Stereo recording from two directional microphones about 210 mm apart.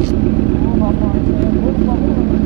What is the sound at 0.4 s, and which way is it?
Vehicle, 25° right (ahead or behind).